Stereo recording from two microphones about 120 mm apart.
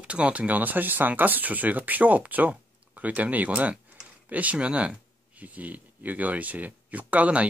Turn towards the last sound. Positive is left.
turn(degrees=-10)  # may be behind; listen again after turning